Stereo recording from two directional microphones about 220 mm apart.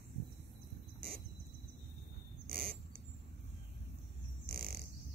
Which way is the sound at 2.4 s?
40° right (ahead or behind).